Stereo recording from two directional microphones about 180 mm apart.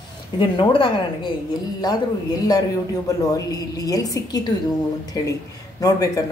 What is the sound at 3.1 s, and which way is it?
Speech, 20° left (ahead or behind).